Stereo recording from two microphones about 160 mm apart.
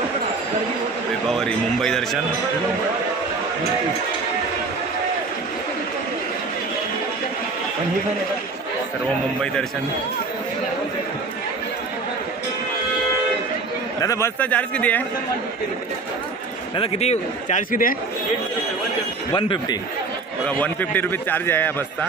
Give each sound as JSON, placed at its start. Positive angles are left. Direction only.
{"t": 1.2, "sound": "a man's voice", "side_deg": 0}
{"t": 14.0, "sound": "a man's voice", "side_deg": 20}
{"t": 16.7, "sound": "a man's voice", "side_deg": 40}
{"t": 19.3, "sound": "speech", "side_deg": 30}
{"t": 20.4, "sound": "a man's voice", "side_deg": 10}